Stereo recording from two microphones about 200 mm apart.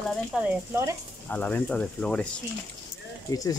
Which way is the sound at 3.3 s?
20° left (ahead or behind).